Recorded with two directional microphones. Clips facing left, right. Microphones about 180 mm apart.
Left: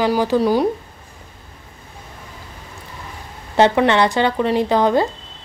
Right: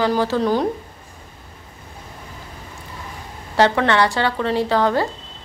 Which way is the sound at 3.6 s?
20° left (ahead or behind).